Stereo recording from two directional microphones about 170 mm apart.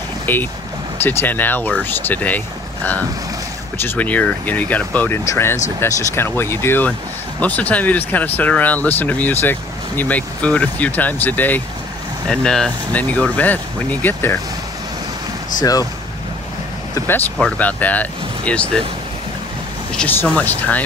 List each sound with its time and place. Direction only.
0.3 s speech: 10° left (ahead or behind)
15.6 s speech: 20° left (ahead or behind)
17.4 s speech: 5° left (ahead or behind)
19.9 s speech: 10° left (ahead or behind)